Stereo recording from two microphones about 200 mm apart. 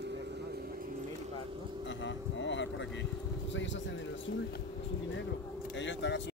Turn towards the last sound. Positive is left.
turn(degrees=65)  # may be behind; listen again after turning